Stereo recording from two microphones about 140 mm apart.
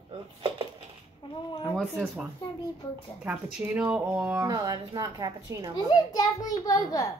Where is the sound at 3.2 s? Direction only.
10° right (ahead or behind).